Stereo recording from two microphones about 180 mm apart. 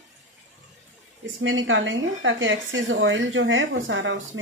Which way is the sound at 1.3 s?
90° right.